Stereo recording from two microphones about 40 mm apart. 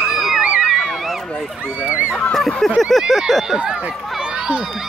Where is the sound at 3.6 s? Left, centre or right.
Right.